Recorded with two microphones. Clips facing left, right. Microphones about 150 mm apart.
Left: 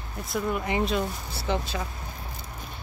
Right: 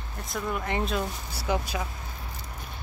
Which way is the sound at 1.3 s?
10° right (ahead or behind).